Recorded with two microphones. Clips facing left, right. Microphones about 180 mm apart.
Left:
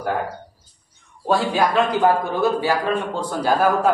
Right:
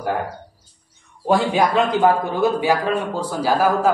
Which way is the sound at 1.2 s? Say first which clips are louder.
Right 2 dB; 15° right (ahead or behind).